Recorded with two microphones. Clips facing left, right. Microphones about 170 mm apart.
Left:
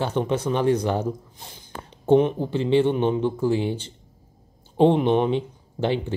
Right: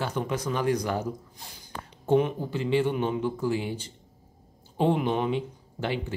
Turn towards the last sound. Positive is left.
turn(degrees=30)  # may be behind; listen again after turning